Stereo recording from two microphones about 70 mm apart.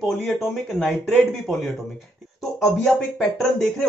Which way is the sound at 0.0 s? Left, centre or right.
Centre.